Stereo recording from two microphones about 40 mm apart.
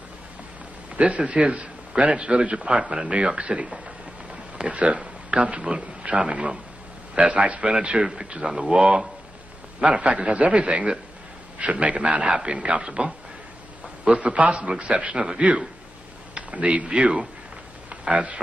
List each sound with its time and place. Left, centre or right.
0.9 s a man's voice: right
9.8 s a man's voice: right